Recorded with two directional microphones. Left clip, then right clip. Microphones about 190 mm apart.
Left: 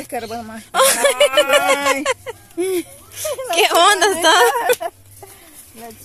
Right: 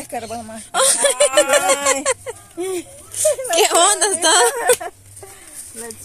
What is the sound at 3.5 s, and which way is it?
A woman's voice, 10° right (ahead or behind).